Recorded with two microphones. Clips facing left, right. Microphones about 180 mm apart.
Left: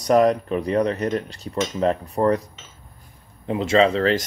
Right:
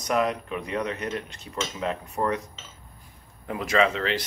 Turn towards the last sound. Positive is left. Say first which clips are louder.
# left 6 dB
turn(degrees=35)  # may be behind; listen again after turning